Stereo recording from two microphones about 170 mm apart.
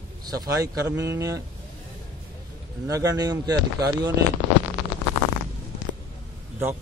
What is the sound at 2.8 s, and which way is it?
Speech, 20° right (ahead or behind).